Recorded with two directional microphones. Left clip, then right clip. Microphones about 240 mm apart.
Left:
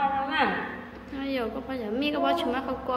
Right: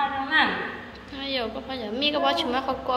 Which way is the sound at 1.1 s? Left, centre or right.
Centre.